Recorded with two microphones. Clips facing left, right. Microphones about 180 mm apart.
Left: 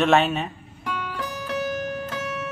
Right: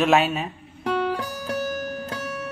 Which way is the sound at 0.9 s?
40° right (ahead or behind).